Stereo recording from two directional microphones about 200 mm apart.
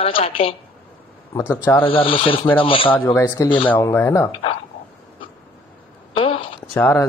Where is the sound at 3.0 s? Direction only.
15° left (ahead or behind).